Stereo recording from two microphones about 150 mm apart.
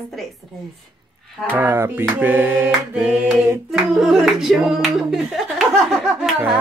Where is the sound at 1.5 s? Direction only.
15° right (ahead or behind).